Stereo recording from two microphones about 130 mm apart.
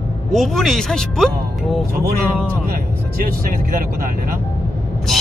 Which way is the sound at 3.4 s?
90° right.